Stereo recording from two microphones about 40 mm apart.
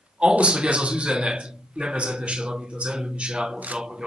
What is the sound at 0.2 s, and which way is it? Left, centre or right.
A man's voice, right.